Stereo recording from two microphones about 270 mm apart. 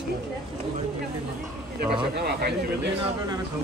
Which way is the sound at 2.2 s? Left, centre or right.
Right.